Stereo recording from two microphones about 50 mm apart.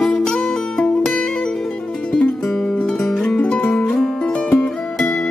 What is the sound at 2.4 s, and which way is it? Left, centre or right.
Music, centre.